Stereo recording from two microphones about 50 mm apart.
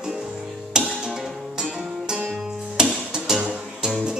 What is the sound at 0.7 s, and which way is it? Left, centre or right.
Music, centre.